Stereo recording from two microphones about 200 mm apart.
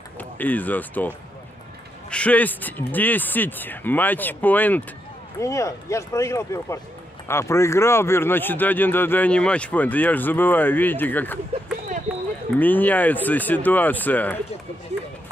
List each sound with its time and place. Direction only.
0.2 s speech: 10° left (ahead or behind)
12.5 s speech: 10° left (ahead or behind)